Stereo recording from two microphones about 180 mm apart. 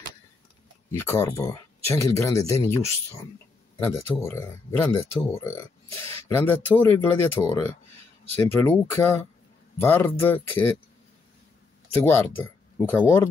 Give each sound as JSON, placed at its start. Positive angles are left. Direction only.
{"t": 0.9, "sound": "speech", "side_deg": 15}
{"t": 3.8, "sound": "speech", "side_deg": 15}
{"t": 11.9, "sound": "speech", "side_deg": 10}